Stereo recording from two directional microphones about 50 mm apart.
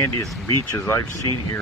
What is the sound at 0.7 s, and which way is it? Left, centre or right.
Speech, left.